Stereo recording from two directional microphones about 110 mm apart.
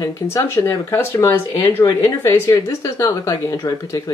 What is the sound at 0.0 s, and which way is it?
Speech, 30° left (ahead or behind).